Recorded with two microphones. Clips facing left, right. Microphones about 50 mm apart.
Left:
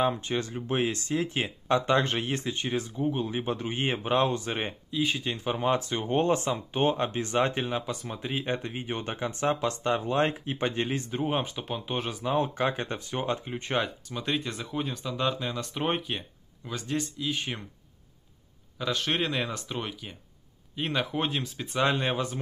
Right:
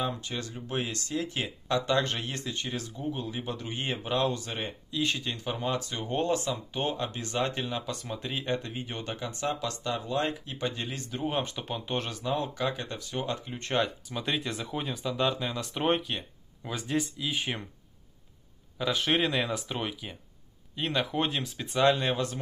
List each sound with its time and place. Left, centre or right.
0.0 s speech: left
4.9 s speech: centre
5.3 s speech: left
7.9 s speech: centre
8.5 s speech: left
12.2 s speech: left
13.6 s speech: centre
16.6 s speech: centre
18.8 s speech: centre